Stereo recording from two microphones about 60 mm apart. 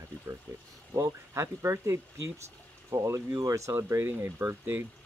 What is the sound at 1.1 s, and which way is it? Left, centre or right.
Speech, right.